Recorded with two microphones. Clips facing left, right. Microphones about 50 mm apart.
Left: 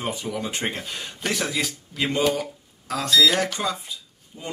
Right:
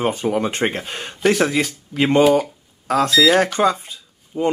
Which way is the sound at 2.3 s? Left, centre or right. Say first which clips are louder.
Right 9 dB; right.